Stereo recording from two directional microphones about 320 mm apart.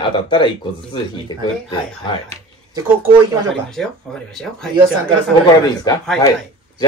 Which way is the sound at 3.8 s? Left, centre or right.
Centre.